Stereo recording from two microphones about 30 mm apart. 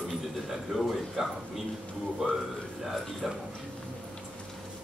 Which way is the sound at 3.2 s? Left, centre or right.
Right.